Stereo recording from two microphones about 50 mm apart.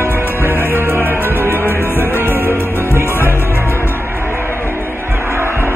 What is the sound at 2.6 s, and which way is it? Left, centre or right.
Music, left.